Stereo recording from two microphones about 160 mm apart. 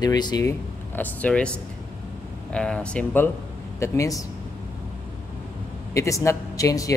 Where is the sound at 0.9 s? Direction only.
10° left (ahead or behind).